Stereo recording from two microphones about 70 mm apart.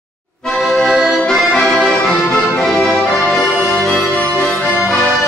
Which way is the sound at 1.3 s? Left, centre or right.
Centre.